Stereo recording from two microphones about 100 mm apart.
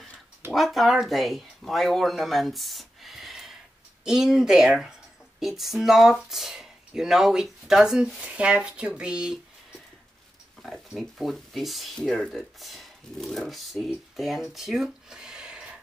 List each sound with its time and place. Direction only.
0.5 s speech: centre (ahead or behind)
10.6 s speech: centre (ahead or behind)